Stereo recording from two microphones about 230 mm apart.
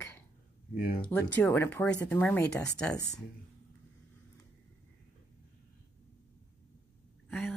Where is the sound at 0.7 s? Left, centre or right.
Left.